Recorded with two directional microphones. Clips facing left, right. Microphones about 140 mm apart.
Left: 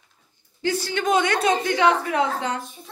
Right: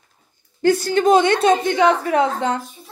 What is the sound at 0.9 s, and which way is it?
Speech, 35° right (ahead or behind).